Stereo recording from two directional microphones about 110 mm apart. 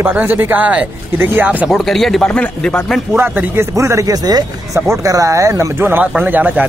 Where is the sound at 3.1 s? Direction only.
20° right (ahead or behind).